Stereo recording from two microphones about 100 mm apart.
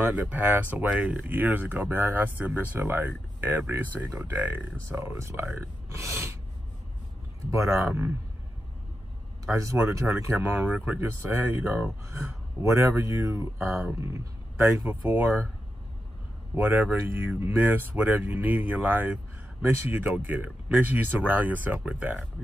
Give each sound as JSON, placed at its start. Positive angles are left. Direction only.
{"t": 0.0, "sound": "speech", "side_deg": -15}
{"t": 7.5, "sound": "speech", "side_deg": -30}
{"t": 9.5, "sound": "speech", "side_deg": -30}
{"t": 16.5, "sound": "speech", "side_deg": -15}